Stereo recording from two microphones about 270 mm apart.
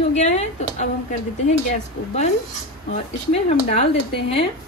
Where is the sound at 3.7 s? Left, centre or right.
Left.